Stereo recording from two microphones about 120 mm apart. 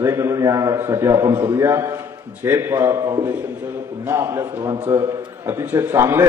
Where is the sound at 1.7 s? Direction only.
25° right (ahead or behind).